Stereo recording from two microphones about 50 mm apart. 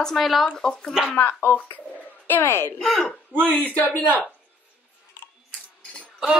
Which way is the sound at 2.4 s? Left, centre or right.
Left.